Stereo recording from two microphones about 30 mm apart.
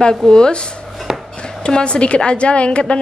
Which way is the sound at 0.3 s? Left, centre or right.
Left.